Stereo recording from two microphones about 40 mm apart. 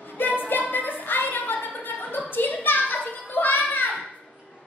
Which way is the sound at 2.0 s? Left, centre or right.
Left.